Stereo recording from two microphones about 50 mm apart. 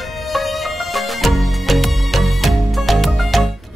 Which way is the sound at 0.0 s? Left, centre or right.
Centre.